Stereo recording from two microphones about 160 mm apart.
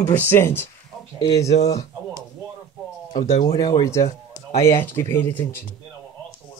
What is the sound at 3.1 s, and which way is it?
Speech, 50° left (ahead or behind).